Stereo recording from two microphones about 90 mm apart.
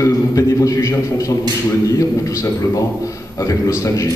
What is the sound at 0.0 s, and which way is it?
A man's voice, 35° left (ahead or behind).